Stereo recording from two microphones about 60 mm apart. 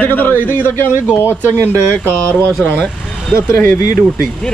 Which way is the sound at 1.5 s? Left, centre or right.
Right.